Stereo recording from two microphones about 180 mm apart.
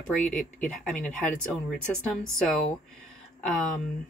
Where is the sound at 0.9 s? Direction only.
5° left (ahead or behind).